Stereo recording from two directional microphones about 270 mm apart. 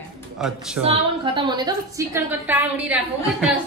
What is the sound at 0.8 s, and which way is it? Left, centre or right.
A woman's voice, centre.